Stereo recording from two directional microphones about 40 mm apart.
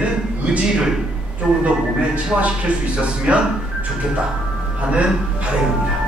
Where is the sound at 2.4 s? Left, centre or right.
Right.